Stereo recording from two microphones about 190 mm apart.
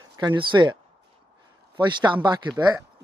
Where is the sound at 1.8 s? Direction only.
25° right (ahead or behind).